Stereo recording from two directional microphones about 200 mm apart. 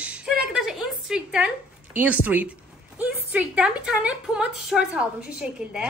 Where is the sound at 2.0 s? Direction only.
10° right (ahead or behind).